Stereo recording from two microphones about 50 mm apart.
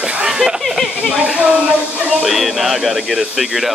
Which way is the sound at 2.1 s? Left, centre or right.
Centre.